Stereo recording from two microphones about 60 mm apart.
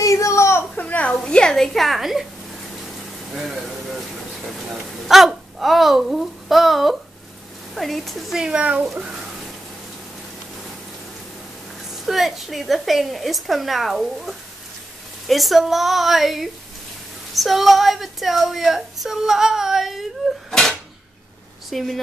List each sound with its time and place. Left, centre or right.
0.0 s whimper: left
0.7 s a sound: left
1.1 s a woman's voice: centre
3.3 s a woman's voice: centre
5.0 s a woman's voice: centre
11.9 s a woman's voice: centre
21.6 s a woman's voice: centre